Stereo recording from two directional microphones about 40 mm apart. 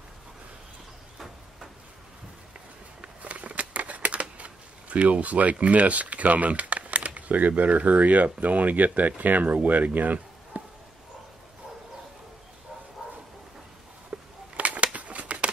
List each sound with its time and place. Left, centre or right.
3.0 s scissors: right
7.2 s speech: right
14.1 s a sound: right